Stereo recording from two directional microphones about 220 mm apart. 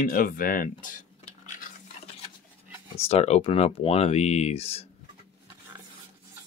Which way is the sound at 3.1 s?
30° left (ahead or behind).